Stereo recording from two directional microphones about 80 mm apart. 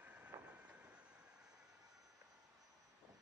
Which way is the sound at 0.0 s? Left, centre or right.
Centre.